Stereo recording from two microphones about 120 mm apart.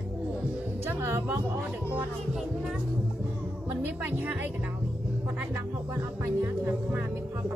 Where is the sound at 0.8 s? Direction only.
15° right (ahead or behind).